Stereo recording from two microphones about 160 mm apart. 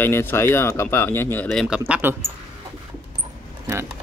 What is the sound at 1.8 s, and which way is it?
Speech, 15° right (ahead or behind).